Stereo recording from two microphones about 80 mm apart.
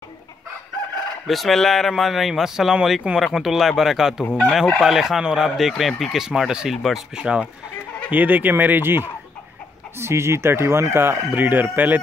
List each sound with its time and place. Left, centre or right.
1.2 s speech: centre; by 12.0 s right